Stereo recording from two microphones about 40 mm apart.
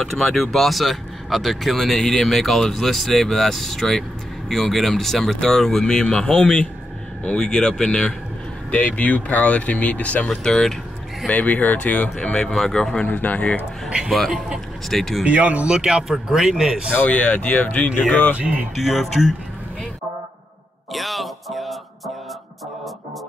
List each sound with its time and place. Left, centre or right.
0.0 s speech: centre; by 8.1 s left
8.7 s speech: left
10.2 s speech: centre
11.2 s speech: left
12.2 s speech: left
13.0 s speech: left
13.8 s a man's voice: centre
14.9 s speech: centre
15.2 s speech: right
15.7 s a man's voice: centre
17.1 s speech: left
18.8 s speech: centre
20.9 s speech: centre